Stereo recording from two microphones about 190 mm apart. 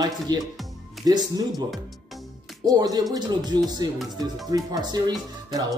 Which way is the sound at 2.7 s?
20° right (ahead or behind).